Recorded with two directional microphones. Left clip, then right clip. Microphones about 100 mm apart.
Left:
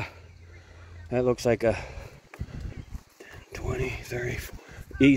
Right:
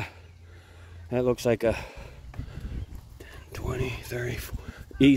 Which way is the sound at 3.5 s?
35° right (ahead or behind).